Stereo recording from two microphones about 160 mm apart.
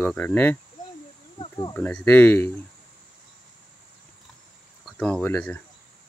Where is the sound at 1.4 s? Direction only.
25° left (ahead or behind).